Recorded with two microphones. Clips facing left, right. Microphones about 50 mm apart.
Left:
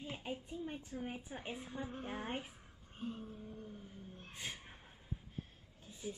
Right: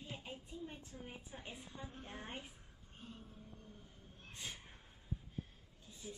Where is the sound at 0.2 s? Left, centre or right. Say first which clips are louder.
Left 5 dB; left.